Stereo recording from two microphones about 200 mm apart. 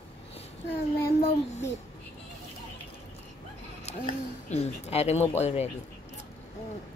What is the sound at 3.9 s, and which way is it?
Speech, 30° left (ahead or behind).